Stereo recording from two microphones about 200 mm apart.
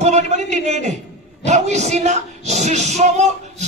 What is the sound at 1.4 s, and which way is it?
Speech, 35° right (ahead or behind).